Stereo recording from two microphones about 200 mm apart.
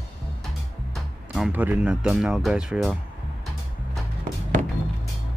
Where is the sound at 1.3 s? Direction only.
5° right (ahead or behind).